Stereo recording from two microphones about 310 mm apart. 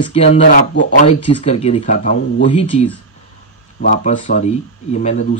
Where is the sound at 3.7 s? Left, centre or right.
Left.